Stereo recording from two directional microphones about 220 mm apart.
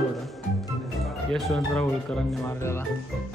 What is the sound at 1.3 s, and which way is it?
Speech, centre (ahead or behind).